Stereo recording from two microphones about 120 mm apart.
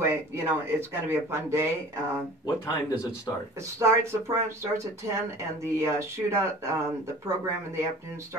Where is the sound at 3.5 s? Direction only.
25° right (ahead or behind).